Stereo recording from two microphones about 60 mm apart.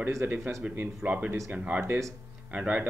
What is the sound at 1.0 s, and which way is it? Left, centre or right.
Speech, centre.